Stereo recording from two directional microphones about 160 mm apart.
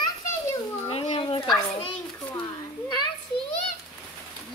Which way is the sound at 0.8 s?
40° left (ahead or behind).